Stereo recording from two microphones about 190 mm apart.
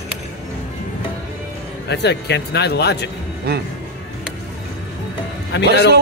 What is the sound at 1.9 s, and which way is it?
Speech, 60° left (ahead or behind).